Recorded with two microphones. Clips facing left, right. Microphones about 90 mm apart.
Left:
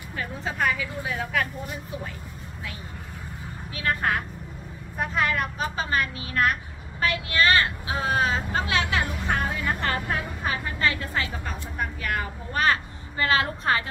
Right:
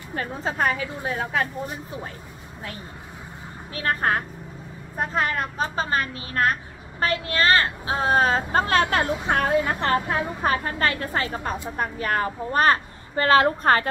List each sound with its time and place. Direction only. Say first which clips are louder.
0.1 s speech: right 4 dB; 40° right (ahead or behind)
3.7 s speech: right 2 dB; 40° right (ahead or behind)
9.3 s speech: right 6 dB; 60° right (ahead or behind)
9.6 s speech: right 5 dB; 20° right (ahead or behind)
10.4 s a woman's voice: right 3 dB; 45° right (ahead or behind)